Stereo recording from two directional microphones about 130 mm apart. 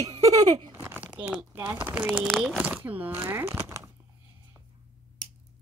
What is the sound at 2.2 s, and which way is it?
Speech, centre (ahead or behind).